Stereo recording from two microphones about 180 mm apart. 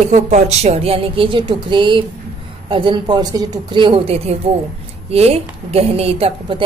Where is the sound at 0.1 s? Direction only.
40° right (ahead or behind).